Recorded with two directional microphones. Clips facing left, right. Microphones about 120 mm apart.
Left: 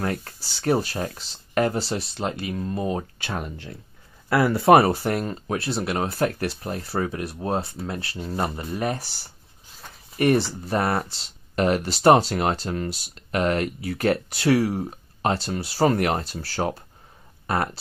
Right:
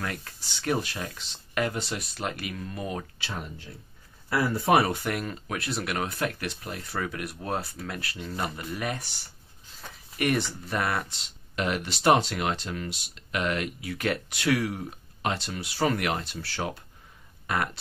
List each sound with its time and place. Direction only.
0.0 s speech: 35° left (ahead or behind)
3.2 s speech: 55° left (ahead or behind); by 4.7 s 70° left (ahead or behind)
4.7 s speech: 40° left (ahead or behind)